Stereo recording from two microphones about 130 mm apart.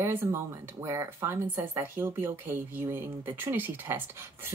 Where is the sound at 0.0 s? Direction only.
20° right (ahead or behind).